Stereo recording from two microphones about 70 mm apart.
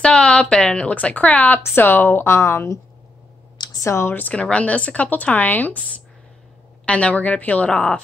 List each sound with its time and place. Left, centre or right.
0.0 s a woman's voice: centre; by 2.8 s left
3.5 s a sound: left
3.8 s a woman's voice: left
4.3 s speech: centre
6.9 s speech: centre